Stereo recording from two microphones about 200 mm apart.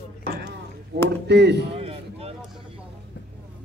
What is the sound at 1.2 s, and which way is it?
Speech, 55° right (ahead or behind).